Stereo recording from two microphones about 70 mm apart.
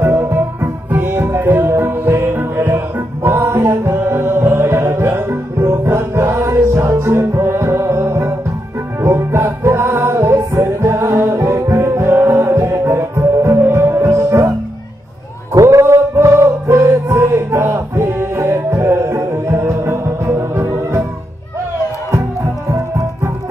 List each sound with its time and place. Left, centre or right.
0.0 s music: right
15.5 s music: right